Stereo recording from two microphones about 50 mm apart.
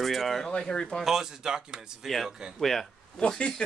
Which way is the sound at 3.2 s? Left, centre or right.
Centre.